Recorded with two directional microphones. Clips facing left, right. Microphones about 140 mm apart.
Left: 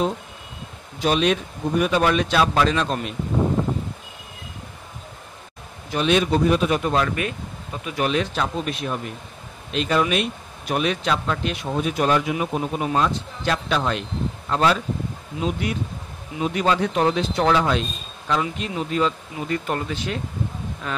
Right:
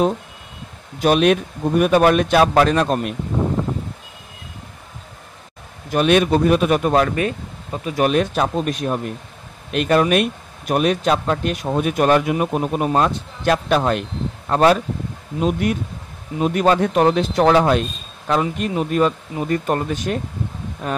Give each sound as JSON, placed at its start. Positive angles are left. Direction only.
{"t": 1.0, "sound": "a man's voice", "side_deg": -55}
{"t": 5.9, "sound": "speech", "side_deg": -55}
{"t": 7.2, "sound": "speech", "side_deg": -35}